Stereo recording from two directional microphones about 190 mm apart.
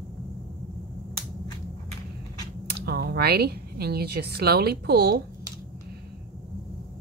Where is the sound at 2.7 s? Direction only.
60° right (ahead or behind).